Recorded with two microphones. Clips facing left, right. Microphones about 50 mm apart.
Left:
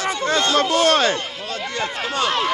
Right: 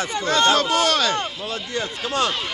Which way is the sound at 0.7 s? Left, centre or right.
Left.